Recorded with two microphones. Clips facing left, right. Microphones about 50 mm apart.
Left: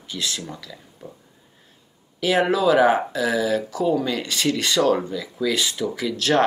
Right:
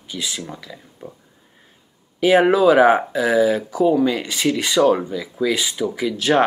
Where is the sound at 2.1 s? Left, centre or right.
Right.